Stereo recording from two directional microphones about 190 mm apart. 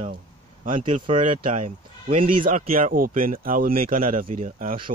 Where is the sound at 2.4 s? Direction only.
45° right (ahead or behind).